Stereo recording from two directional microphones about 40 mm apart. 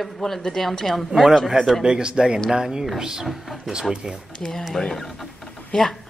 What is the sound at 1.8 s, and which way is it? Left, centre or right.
Speech, right.